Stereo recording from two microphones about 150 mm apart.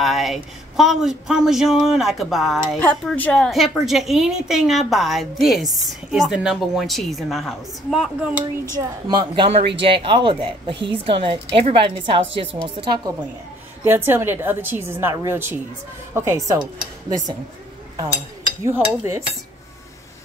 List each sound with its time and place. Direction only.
0.0 s a woman's voice: centre (ahead or behind)
2.8 s a woman's voice: 10° left (ahead or behind); by 8.5 s 5° right (ahead or behind)
8.7 s a woman's voice: 30° right (ahead or behind)
13.1 s a woman's voice: 25° right (ahead or behind)
18.6 s a woman's voice: 20° right (ahead or behind)